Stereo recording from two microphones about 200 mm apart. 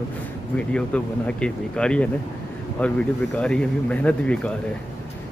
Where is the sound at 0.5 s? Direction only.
5° left (ahead or behind).